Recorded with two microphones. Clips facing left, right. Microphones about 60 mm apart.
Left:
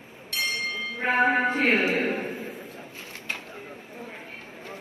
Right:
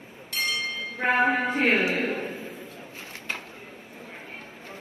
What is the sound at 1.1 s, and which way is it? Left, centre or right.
Speech, left.